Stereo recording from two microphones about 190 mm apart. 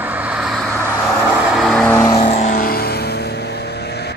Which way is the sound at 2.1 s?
35° left (ahead or behind).